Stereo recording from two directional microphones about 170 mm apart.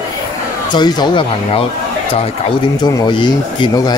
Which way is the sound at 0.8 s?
25° left (ahead or behind).